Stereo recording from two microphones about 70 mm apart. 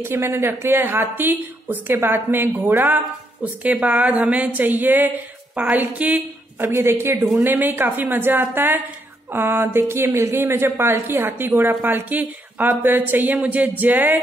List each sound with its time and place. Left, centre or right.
0.0 s a woman's voice: right
3.9 s speech: centre
6.6 s a woman's voice: right
7.2 s a woman's voice: right